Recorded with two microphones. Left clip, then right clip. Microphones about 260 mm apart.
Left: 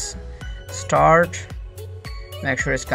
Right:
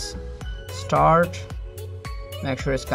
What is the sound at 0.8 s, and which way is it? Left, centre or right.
Speech, centre.